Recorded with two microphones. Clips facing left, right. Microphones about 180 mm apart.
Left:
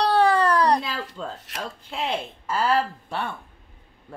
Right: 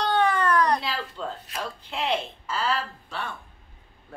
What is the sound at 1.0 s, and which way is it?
Speech, 80° left.